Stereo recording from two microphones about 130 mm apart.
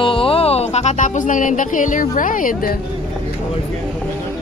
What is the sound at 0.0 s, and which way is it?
Speech, 45° left (ahead or behind).